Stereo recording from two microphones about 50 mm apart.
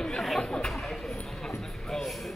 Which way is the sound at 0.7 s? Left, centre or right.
Centre.